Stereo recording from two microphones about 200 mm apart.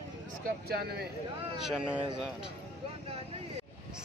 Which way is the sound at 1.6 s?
5° right (ahead or behind).